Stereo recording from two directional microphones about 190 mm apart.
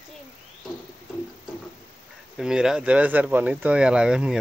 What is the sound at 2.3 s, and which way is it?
Speech, 5° right (ahead or behind).